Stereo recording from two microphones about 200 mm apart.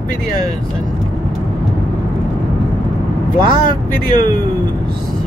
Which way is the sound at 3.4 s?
40° left (ahead or behind).